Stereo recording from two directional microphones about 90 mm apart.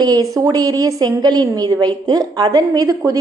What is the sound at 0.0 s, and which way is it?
A woman's voice, 45° right (ahead or behind).